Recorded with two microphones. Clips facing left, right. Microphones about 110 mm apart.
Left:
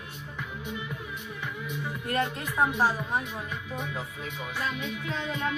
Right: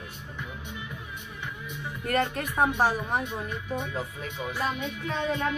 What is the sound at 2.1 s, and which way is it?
Speech, 60° right (ahead or behind).